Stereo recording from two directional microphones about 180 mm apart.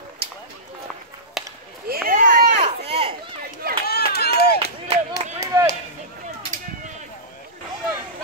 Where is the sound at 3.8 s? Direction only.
65° left (ahead or behind).